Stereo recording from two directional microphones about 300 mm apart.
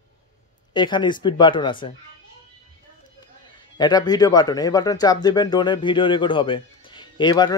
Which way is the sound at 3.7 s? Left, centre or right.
Centre.